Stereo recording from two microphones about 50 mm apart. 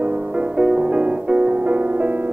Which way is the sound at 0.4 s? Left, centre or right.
Centre.